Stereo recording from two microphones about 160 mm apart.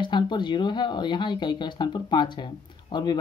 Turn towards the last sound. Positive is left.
turn(degrees=30)  # may be behind; listen again after turning